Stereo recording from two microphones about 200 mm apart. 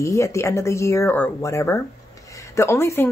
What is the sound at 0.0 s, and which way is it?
Speech, 15° left (ahead or behind).